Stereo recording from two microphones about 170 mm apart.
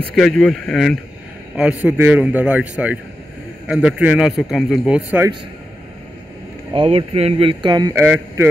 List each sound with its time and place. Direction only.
0.1 s a man's voice: centre (ahead or behind)
1.9 s a man's voice: 10° right (ahead or behind)
6.7 s speech: 30° right (ahead or behind)
8.0 s speech: 10° right (ahead or behind)